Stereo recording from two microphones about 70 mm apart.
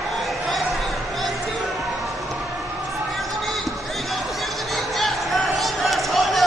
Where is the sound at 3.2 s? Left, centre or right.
Centre.